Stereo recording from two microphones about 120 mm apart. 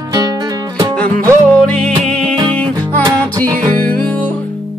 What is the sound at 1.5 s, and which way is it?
Music, 10° left (ahead or behind).